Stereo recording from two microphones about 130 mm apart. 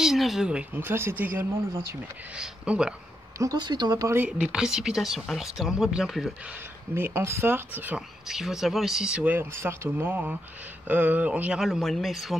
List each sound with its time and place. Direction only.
0.0 s speech: centre (ahead or behind)
3.3 s speech: 30° right (ahead or behind)
4.3 s speech: 5° right (ahead or behind)
7.0 s speech: 20° right (ahead or behind)
8.3 s speech: 5° right (ahead or behind)